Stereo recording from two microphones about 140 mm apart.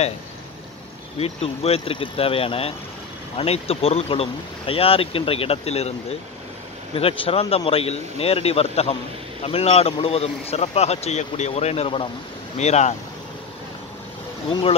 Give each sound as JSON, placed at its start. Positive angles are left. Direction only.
{"t": 1.1, "sound": "speech", "side_deg": 45}